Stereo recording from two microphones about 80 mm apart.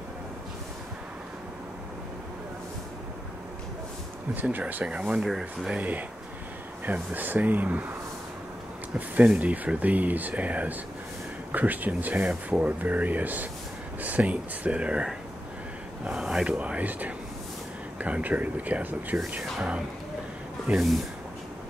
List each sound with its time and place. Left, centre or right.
4.4 s speech: right; by 5.8 s centre
5.8 s speech: right
8.9 s speech: centre
20.7 s speech: centre